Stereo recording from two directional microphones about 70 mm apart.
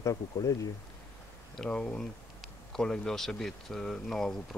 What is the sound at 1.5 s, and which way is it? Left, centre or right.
Speech, centre.